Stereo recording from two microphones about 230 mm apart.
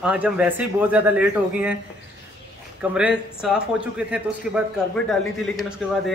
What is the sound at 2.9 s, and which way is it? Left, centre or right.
Speech, centre.